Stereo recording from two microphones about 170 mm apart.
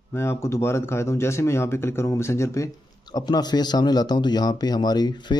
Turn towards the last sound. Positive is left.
turn(degrees=25)  # may be behind; listen again after turning